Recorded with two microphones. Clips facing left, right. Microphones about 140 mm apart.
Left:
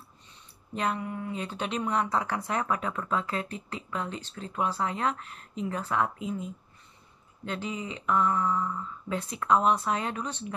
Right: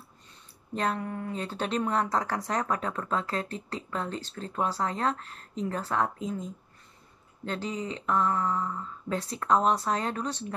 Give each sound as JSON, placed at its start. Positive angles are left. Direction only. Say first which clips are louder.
{"t": 0.7, "sound": "speech", "louder": "right 1 dB", "side_deg": -40}
{"t": 7.4, "sound": "speech", "louder": "right 1 dB", "side_deg": -40}